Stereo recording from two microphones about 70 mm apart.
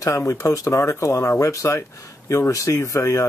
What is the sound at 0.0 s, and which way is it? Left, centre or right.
Speech, left.